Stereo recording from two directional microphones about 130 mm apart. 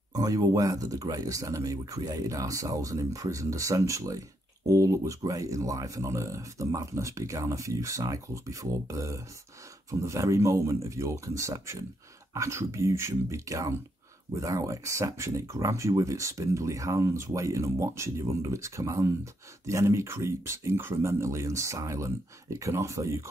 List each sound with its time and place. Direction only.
0.1 s speech: 30° right (ahead or behind)